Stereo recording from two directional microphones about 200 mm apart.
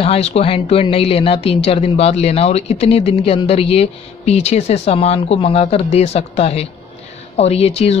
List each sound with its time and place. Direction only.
0.0 s speech: 30° left (ahead or behind)